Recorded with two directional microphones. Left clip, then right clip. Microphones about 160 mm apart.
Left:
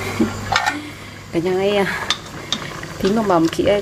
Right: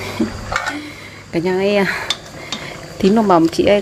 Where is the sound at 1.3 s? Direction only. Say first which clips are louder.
Right 2 dB; 20° right (ahead or behind).